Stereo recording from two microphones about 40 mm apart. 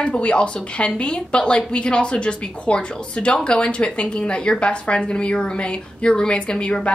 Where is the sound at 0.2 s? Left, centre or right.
Left.